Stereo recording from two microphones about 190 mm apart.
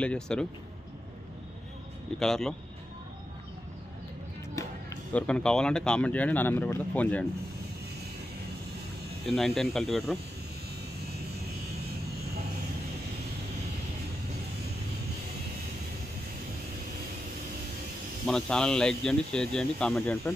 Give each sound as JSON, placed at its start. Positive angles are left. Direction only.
{"t": 0.0, "sound": "speech", "side_deg": 5}
{"t": 2.1, "sound": "speech", "side_deg": 5}
{"t": 4.6, "sound": "music", "side_deg": 15}
{"t": 5.1, "sound": "speech", "side_deg": 5}
{"t": 9.2, "sound": "speech", "side_deg": 0}
{"t": 18.2, "sound": "speech", "side_deg": 5}